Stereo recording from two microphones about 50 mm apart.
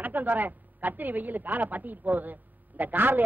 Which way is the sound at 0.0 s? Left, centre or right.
Right.